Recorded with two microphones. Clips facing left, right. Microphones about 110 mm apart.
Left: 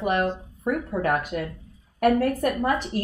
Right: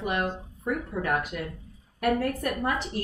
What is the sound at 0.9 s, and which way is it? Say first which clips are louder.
Speech: left 4 dB; 55° left (ahead or behind).